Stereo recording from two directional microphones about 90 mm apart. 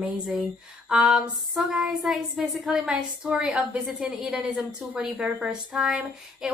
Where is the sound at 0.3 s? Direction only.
10° right (ahead or behind).